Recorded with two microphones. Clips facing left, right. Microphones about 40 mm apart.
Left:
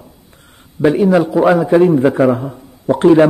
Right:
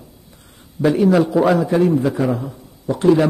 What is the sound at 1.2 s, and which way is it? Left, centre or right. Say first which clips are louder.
Speech: left 2 dB; centre.